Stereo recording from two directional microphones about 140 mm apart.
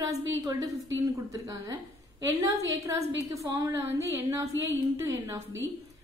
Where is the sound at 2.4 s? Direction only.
20° right (ahead or behind).